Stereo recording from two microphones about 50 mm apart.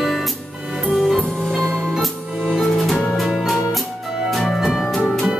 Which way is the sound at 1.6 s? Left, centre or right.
Centre.